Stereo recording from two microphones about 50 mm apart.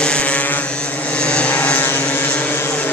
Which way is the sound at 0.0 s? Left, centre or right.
Left.